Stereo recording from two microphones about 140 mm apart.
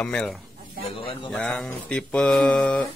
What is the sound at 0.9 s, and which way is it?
Speech, 40° left (ahead or behind).